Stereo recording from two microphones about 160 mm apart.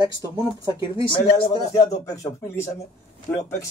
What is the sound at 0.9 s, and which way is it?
A man's voice, 30° left (ahead or behind).